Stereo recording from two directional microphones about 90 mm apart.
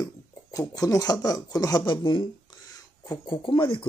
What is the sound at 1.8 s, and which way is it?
Speech, 60° left (ahead or behind).